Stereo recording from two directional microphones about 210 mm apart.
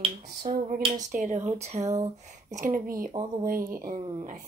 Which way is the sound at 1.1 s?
35° right (ahead or behind).